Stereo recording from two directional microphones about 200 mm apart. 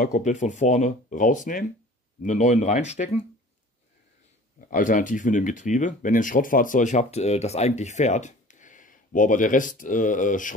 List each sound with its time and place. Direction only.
0.0 s speech: 35° left (ahead or behind)
4.6 s speech: 40° left (ahead or behind)